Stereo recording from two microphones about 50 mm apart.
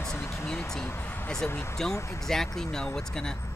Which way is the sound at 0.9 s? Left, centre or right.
Left.